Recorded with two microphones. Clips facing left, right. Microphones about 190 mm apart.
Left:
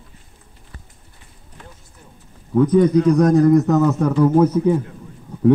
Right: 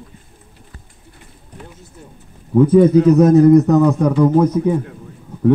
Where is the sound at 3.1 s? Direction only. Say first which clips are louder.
Right 5 dB; 5° right (ahead or behind).